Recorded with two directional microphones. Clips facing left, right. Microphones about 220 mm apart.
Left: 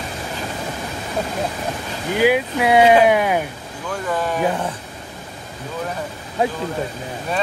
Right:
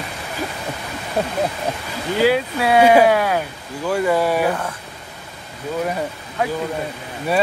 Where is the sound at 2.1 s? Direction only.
15° left (ahead or behind).